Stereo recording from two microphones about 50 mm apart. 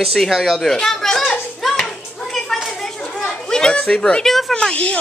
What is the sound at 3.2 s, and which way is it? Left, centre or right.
Children playing, centre.